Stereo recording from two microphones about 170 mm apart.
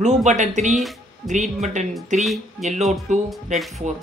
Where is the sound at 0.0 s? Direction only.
45° right (ahead or behind).